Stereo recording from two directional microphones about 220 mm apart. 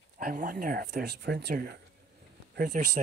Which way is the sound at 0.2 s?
40° right (ahead or behind).